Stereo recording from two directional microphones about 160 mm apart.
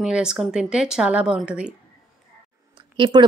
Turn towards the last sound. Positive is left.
turn(degrees=-30)  # may be behind; listen again after turning